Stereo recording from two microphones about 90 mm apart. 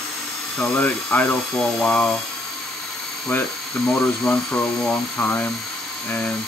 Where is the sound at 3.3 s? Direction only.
20° left (ahead or behind).